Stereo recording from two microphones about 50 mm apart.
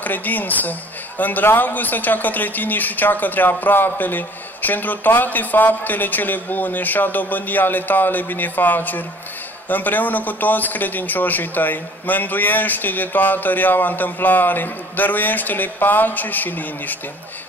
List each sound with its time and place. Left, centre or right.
0.0 s speech: left